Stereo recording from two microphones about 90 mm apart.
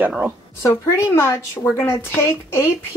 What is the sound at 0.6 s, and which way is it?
A woman's voice, 30° left (ahead or behind).